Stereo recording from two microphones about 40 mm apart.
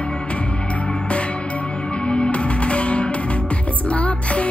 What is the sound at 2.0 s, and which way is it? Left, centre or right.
Music, left.